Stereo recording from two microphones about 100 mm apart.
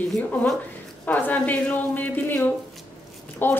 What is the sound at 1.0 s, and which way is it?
Speech, 15° left (ahead or behind).